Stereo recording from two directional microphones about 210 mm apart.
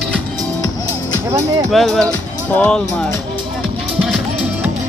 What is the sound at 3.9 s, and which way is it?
Music, centre (ahead or behind).